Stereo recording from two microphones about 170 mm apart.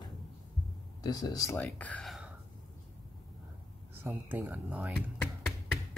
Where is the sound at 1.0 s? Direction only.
20° left (ahead or behind).